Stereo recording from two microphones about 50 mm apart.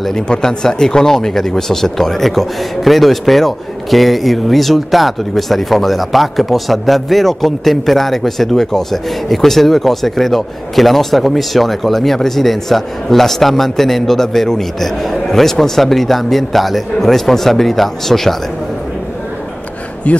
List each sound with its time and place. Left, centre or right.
0.0 s speech: centre
20.1 s speech: left